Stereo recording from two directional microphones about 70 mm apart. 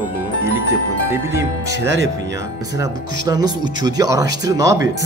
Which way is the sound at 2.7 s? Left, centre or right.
Right.